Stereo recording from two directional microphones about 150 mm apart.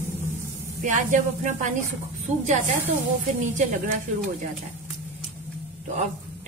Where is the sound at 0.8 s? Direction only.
55° right (ahead or behind).